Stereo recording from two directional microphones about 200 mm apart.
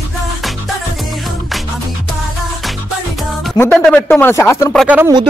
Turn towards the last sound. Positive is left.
turn(degrees=-5)  # may be behind; listen again after turning